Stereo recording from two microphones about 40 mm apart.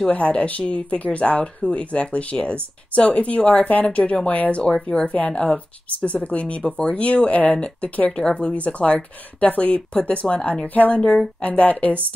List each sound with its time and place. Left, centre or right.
0.1 s a woman's voice: left